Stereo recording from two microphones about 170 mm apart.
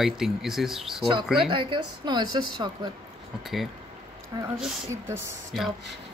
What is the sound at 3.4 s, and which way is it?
Speech, centre (ahead or behind).